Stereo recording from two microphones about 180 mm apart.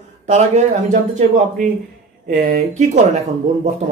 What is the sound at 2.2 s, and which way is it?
Speech, 45° right (ahead or behind).